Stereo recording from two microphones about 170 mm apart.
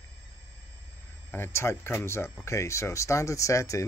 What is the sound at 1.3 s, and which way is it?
Speech, 15° left (ahead or behind).